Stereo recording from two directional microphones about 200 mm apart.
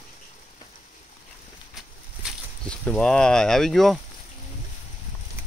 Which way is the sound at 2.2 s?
5° left (ahead or behind).